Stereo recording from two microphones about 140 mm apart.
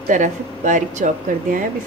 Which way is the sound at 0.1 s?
65° right (ahead or behind).